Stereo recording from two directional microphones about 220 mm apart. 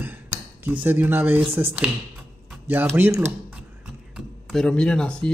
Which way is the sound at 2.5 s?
10° right (ahead or behind).